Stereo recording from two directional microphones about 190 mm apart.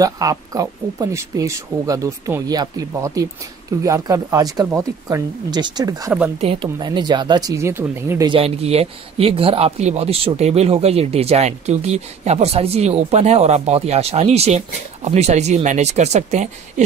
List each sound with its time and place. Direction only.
0.0 s speech: 20° right (ahead or behind)
8.3 s speech: 30° right (ahead or behind)